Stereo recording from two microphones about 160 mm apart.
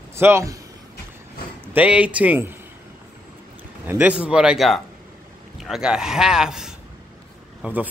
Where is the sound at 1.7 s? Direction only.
10° right (ahead or behind).